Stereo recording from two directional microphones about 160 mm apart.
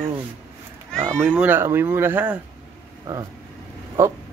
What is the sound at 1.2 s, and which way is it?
Speech, 10° right (ahead or behind).